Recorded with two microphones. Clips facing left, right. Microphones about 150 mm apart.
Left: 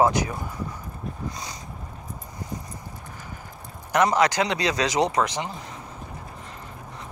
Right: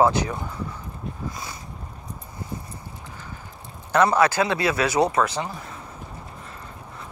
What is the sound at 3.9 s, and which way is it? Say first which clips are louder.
Speech: right 2 dB; 15° left (ahead or behind).